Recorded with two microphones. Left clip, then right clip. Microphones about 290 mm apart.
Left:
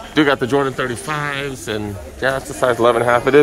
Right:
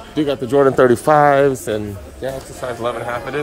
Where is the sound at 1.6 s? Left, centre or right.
Centre.